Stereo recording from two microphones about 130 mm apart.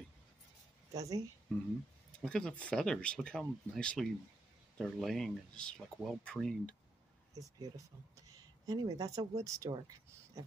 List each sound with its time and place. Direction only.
0.9 s speech: 25° right (ahead or behind)
2.1 s speech: 5° left (ahead or behind)
7.3 s speech: 25° right (ahead or behind)
8.3 s a sound: 30° right (ahead or behind)
9.3 s speech: 30° right (ahead or behind)